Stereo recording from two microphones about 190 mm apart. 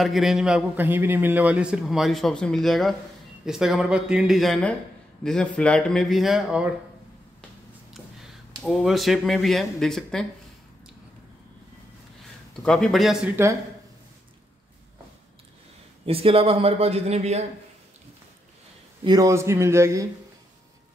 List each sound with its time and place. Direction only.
0.0 s a man's voice: centre (ahead or behind)
7.9 s speech: centre (ahead or behind)
12.6 s a man's voice: centre (ahead or behind)
16.1 s speech: 30° right (ahead or behind)
19.0 s a man's voice: 20° right (ahead or behind)